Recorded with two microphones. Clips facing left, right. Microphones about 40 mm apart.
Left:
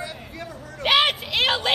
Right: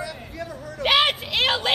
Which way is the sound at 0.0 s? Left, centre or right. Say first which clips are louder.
Right 2 dB; left.